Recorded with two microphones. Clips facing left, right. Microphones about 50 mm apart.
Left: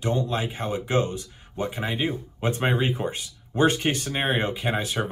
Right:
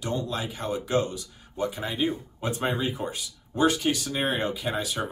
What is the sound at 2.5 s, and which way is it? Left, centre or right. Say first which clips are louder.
Speech: left 3 dB; left.